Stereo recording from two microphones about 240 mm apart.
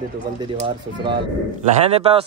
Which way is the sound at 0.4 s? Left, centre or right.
Centre.